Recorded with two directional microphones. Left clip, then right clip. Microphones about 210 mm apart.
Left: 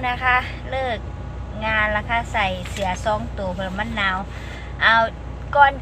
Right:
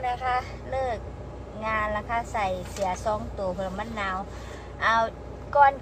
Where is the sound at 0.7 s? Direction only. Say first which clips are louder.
Left 4 dB; 10° right (ahead or behind).